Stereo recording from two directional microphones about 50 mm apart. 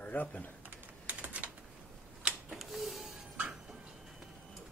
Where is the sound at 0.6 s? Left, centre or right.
Right.